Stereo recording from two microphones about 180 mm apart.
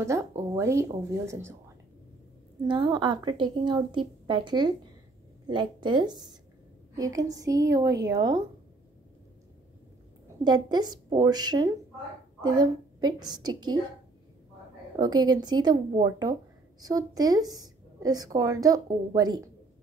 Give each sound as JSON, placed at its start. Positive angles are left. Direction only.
{"t": 0.4, "sound": "speech", "side_deg": -15}
{"t": 2.6, "sound": "a woman's voice", "side_deg": -25}
{"t": 10.4, "sound": "a woman's voice", "side_deg": -25}
{"t": 15.0, "sound": "a woman's voice", "side_deg": -20}